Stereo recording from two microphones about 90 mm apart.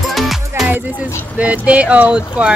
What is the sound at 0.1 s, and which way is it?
Music, centre (ahead or behind).